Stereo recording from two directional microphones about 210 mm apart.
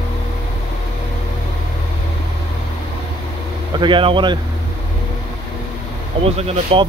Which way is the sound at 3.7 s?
25° right (ahead or behind).